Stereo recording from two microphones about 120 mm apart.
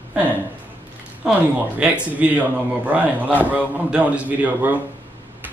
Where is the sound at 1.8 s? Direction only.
10° right (ahead or behind).